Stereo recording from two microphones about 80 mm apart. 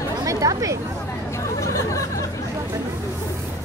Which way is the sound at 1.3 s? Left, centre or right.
Left.